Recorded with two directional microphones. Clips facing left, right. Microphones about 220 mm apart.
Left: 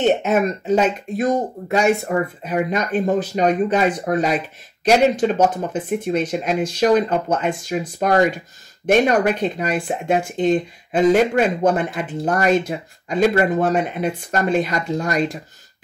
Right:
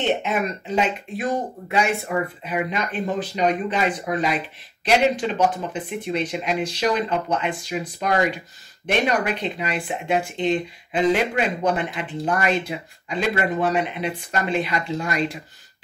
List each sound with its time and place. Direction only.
0.0 s speech: 45° left (ahead or behind)